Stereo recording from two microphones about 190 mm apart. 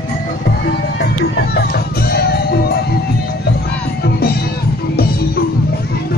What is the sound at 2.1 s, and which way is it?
Music, 55° left (ahead or behind).